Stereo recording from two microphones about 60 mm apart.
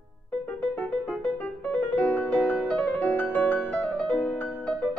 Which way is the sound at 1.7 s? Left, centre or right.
Left.